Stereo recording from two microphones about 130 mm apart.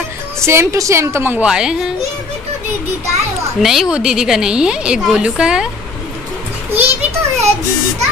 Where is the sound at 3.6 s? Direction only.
Centre (ahead or behind).